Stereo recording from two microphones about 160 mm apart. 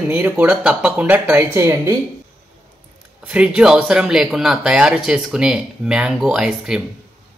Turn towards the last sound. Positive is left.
turn(degrees=-5)  # may be behind; listen again after turning